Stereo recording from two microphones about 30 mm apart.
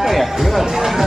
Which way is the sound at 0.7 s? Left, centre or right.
Centre.